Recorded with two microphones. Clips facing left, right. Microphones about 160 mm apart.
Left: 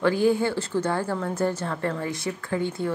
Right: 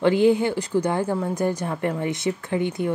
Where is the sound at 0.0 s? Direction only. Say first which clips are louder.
Right 3 dB; 20° right (ahead or behind).